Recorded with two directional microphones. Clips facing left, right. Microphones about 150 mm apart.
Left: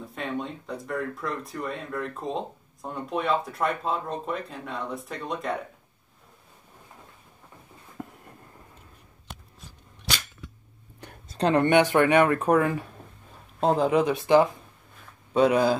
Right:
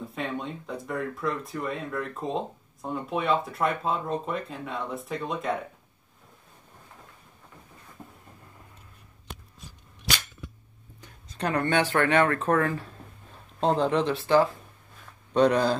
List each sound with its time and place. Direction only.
0.1 s speech: centre (ahead or behind)
8.0 s train: 75° left (ahead or behind)
11.2 s speech: 30° left (ahead or behind); by 15.8 s 10° left (ahead or behind)